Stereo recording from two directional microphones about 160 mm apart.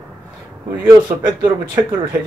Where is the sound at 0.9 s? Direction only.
30° right (ahead or behind).